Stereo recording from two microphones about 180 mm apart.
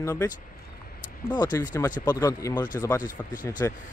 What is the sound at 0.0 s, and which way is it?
Speech, 15° left (ahead or behind).